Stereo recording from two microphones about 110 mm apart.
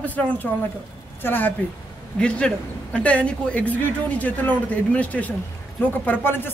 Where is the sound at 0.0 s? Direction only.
15° left (ahead or behind).